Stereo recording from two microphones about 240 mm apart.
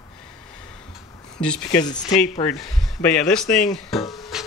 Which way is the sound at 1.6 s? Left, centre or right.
Centre.